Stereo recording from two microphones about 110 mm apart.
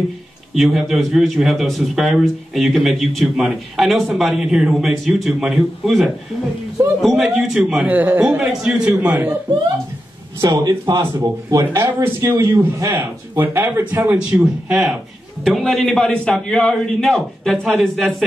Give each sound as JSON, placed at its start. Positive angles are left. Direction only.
{"t": 0.6, "sound": "a man's voice", "side_deg": 0}
{"t": 10.5, "sound": "speech", "side_deg": -35}
{"t": 14.1, "sound": "a man's voice", "side_deg": -10}